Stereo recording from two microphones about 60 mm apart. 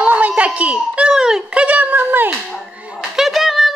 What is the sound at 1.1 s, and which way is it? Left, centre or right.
Speech, centre.